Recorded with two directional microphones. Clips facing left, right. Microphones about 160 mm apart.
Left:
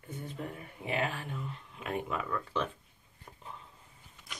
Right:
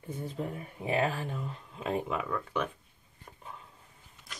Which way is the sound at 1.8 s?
30° right (ahead or behind).